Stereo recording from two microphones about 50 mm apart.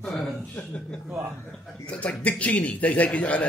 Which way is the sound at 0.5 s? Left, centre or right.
Centre.